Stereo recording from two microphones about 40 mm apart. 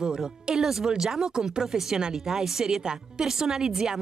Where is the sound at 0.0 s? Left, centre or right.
Right.